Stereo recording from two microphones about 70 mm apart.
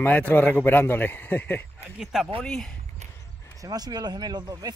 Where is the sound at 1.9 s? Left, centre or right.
Centre.